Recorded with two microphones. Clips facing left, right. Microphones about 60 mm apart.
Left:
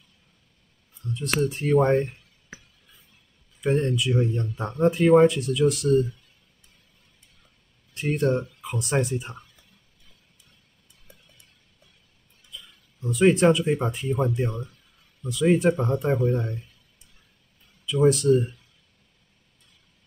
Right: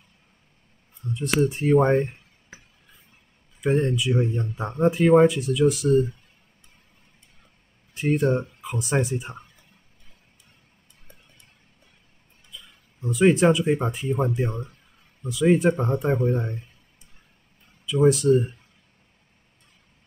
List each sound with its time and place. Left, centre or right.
1.1 s speech: centre
3.6 s speech: centre
7.9 s speech: centre
12.4 s speech: centre
14.5 s speech: right
15.2 s speech: centre
17.8 s speech: centre